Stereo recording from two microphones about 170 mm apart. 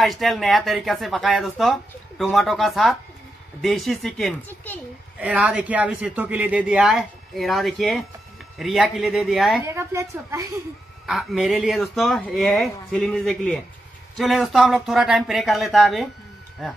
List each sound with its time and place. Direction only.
0.0 s speech: centre (ahead or behind)
5.2 s speech: 10° right (ahead or behind)
9.8 s speech: 15° right (ahead or behind)
11.1 s speech: centre (ahead or behind)